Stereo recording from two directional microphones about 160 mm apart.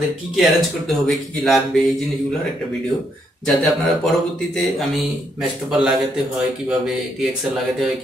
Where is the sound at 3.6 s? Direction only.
Centre (ahead or behind).